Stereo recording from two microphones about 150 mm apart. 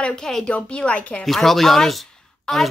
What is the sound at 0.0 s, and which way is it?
Speech, 5° left (ahead or behind).